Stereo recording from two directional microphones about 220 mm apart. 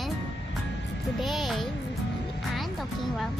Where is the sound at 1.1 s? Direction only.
Centre (ahead or behind).